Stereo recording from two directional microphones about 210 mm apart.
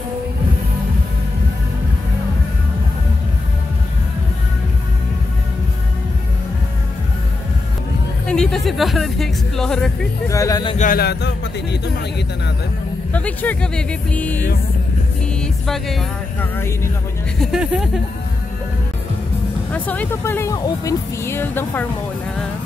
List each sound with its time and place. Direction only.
8.3 s speech: 5° left (ahead or behind)
10.3 s speech: 15° left (ahead or behind)
10.8 s speech: 45° left (ahead or behind)
13.1 s speech: 5° left (ahead or behind)
15.4 s music: centre (ahead or behind)
17.4 s speech: centre (ahead or behind)
19.7 s speech: 5° left (ahead or behind)